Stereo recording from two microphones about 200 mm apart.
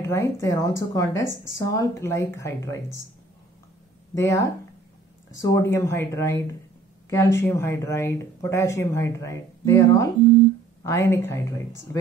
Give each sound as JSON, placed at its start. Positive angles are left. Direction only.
{"t": 0.0, "sound": "speech", "side_deg": 15}
{"t": 4.1, "sound": "speech", "side_deg": 15}